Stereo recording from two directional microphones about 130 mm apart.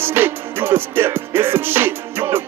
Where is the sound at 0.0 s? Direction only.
15° right (ahead or behind).